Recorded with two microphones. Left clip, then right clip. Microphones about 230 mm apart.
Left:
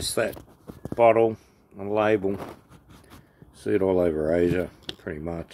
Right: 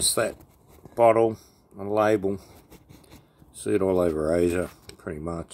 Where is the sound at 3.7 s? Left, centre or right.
Centre.